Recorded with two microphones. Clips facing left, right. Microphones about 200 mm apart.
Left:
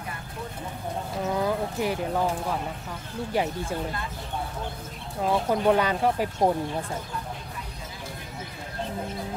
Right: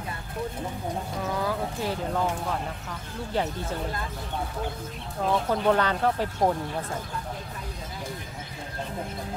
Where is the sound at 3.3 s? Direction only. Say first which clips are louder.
Left 1 dB; 10° left (ahead or behind).